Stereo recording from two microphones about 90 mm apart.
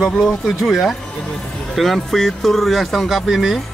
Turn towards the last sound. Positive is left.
turn(degrees=0)  # may be behind; listen again after turning